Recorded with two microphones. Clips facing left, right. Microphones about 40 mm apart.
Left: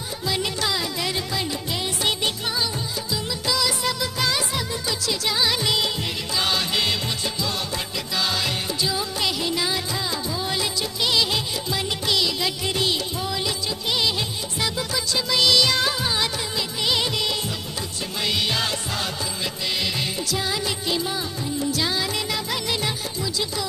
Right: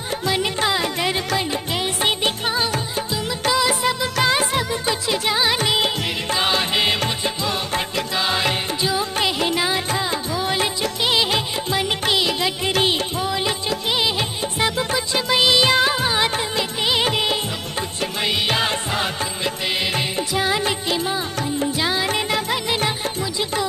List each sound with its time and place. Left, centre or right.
0.3 s music: right
3.5 s music of bollywood: right
4.6 s music: right
8.2 s music: right
13.8 s music of bollywood: right
14.6 s music: right
15.3 s music of bollywood: right
17.0 s music: right
21.7 s music: right